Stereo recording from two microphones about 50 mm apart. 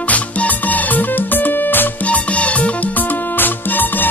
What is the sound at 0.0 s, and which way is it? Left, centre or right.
Music, left.